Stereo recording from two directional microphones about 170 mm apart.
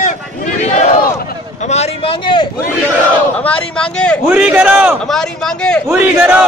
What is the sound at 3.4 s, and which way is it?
Speech, 5° left (ahead or behind).